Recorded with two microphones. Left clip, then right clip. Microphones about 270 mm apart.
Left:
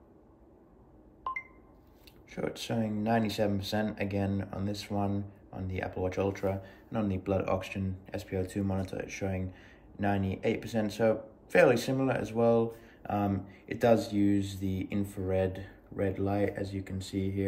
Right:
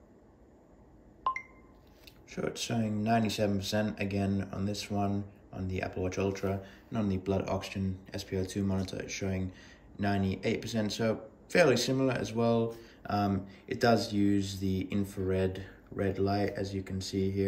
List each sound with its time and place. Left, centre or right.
2.3 s speech: centre